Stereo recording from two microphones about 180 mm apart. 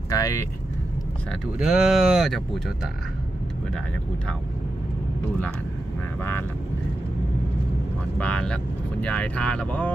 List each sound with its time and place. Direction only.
0.1 s vehicle: 20° left (ahead or behind)
1.6 s speech: centre (ahead or behind)
8.2 s speech: 5° left (ahead or behind)